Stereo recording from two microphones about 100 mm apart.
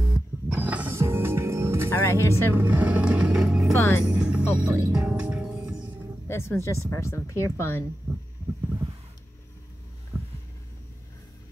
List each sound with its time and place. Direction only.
0.5 s music: 15° right (ahead or behind)
1.9 s music: 25° left (ahead or behind)
2.5 s vehicle: 20° right (ahead or behind)
3.7 s speech: 25° left (ahead or behind)
4.0 s music: 10° right (ahead or behind)
6.2 s speech: 25° left (ahead or behind)
10.1 s a sound: 25° right (ahead or behind)